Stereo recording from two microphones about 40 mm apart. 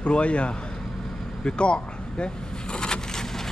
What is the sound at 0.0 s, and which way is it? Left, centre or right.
Speech, left.